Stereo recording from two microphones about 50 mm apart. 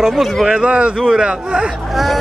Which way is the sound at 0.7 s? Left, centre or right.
Right.